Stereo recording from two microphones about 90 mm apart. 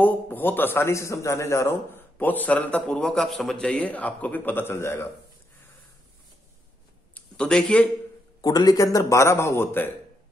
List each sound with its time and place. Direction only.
0.0 s a man's voice: 20° left (ahead or behind)
2.2 s a man's voice: 20° left (ahead or behind)
7.2 s speech: 10° left (ahead or behind)
8.4 s a man's voice: 45° left (ahead or behind); by 9.9 s 25° left (ahead or behind)